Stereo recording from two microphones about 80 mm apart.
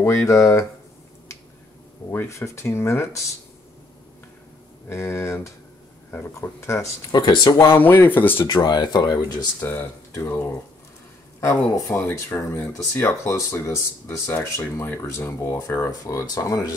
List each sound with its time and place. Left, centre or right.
0.0 s speech: left
2.0 s speech: left
4.8 s speech: left
7.1 s speech: left
7.5 s speech: left
8.5 s speech: left
9.6 s speech: left
11.9 s speech: left
16.0 s speech: left